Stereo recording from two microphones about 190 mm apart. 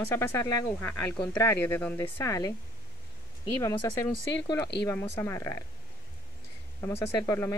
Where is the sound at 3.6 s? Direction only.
15° left (ahead or behind).